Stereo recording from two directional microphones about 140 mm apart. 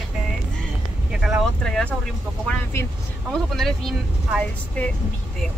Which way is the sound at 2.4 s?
20° left (ahead or behind).